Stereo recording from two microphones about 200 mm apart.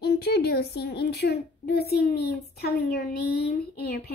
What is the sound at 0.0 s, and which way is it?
A woman's voice, 55° left (ahead or behind).